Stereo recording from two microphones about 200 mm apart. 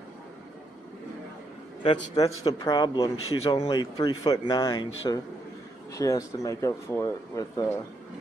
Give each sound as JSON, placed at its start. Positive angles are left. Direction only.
{"t": 1.8, "sound": "a man's voice", "side_deg": 20}